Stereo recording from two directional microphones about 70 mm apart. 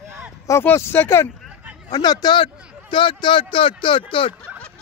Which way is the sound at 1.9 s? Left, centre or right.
Left.